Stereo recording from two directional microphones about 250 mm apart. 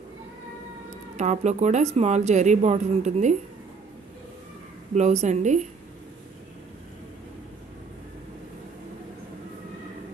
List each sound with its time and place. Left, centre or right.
1.1 s speech: right
4.9 s speech: right